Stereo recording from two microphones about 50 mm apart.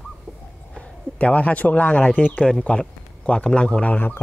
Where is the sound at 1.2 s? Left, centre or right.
Left.